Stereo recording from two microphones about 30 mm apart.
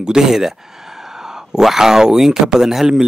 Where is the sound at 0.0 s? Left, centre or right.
Right.